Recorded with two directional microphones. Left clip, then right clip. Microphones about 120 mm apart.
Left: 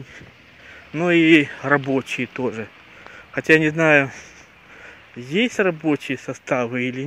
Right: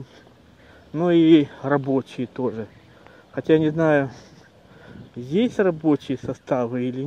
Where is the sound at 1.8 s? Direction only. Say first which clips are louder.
Left 2 dB; 10° left (ahead or behind).